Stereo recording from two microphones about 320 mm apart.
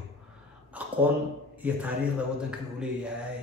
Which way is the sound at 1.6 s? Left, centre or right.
Centre.